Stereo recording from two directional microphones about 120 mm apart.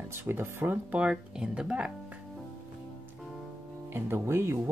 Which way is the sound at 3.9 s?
20° right (ahead or behind).